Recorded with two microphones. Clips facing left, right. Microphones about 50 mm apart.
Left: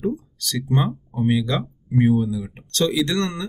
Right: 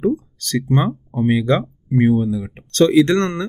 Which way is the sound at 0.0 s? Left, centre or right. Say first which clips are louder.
Right 6 dB; right.